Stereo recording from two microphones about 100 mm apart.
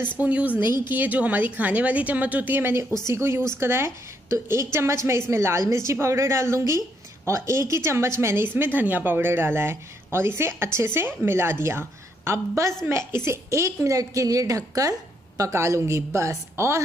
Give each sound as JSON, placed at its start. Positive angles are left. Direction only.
{"t": 0.2, "sound": "a woman's voice", "side_deg": -15}